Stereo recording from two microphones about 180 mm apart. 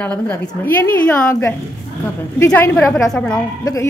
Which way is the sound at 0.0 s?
10° left (ahead or behind).